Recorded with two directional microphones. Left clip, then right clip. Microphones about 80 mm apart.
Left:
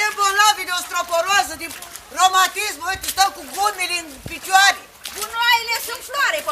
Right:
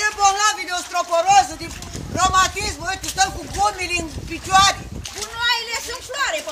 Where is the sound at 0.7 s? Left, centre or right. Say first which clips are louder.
Even; left.